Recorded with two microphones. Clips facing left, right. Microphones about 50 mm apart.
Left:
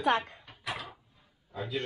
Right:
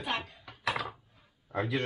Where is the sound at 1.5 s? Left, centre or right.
Right.